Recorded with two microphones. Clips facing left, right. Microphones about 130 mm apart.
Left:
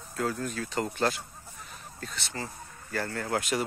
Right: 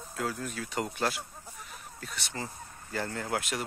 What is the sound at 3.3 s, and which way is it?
Speech, centre (ahead or behind).